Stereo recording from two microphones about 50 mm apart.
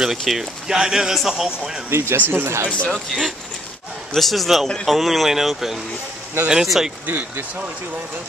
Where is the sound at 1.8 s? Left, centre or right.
Right.